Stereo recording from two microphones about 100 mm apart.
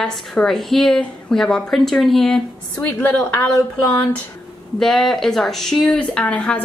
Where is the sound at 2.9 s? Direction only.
15° left (ahead or behind).